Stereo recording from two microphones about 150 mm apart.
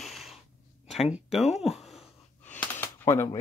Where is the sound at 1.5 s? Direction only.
Centre (ahead or behind).